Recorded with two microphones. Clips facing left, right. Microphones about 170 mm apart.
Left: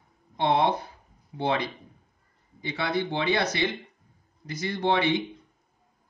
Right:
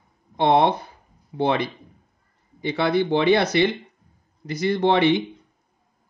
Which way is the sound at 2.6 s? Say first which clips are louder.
Right 7 dB; 75° right (ahead or behind).